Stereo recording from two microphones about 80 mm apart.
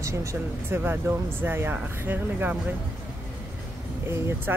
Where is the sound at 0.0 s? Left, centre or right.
Right.